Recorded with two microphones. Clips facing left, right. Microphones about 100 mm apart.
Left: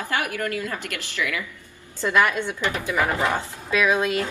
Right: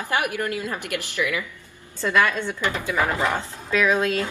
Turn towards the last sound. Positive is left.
turn(degrees=15)  # may be behind; listen again after turning